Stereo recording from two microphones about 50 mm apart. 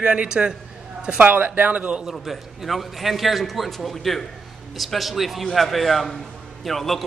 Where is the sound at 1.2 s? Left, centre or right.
Right.